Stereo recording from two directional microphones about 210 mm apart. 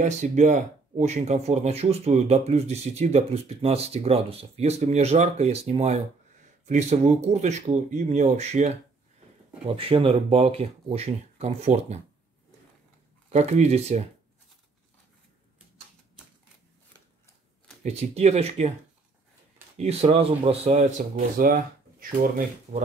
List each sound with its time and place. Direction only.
0.0 s speech: 35° right (ahead or behind)
9.8 s speech: 25° right (ahead or behind)
13.3 s speech: 30° right (ahead or behind)
17.8 s speech: 30° right (ahead or behind)
19.8 s speech: 30° right (ahead or behind)
22.7 s speech: 35° right (ahead or behind)